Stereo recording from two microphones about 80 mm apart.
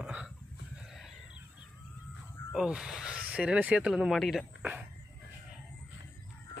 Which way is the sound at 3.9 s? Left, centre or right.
Centre.